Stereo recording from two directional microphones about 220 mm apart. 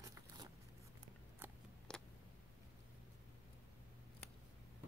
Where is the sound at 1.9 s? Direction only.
5° left (ahead or behind).